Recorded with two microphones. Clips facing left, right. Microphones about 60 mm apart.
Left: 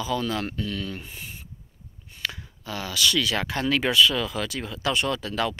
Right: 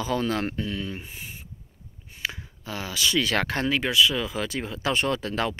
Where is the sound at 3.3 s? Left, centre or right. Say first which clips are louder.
Right 2 dB; right.